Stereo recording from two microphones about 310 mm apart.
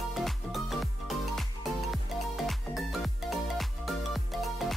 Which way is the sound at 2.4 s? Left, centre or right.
Centre.